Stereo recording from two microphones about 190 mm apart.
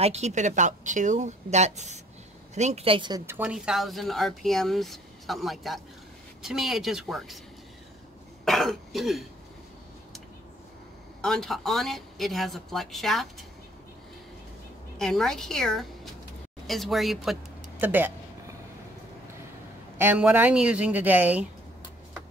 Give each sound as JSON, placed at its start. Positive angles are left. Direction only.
{"t": 0.0, "sound": "speech", "side_deg": -35}
{"t": 3.3, "sound": "speech", "side_deg": -5}
{"t": 8.5, "sound": "speech", "side_deg": 0}
{"t": 11.1, "sound": "speech", "side_deg": 5}
{"t": 15.0, "sound": "speech", "side_deg": 0}
{"t": 20.0, "sound": "speech", "side_deg": -10}